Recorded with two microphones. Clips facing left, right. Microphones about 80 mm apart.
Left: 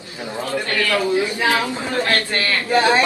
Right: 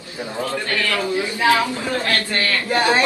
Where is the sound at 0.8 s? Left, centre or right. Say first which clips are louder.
Left 5 dB; left.